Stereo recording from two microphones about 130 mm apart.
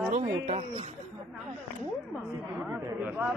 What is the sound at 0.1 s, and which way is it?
Speech, 60° right (ahead or behind).